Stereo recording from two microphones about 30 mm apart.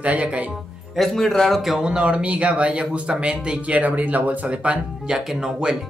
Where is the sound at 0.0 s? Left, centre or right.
Right.